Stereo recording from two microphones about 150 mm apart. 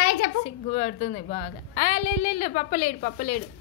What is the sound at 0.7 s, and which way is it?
A woman's voice, 50° left (ahead or behind).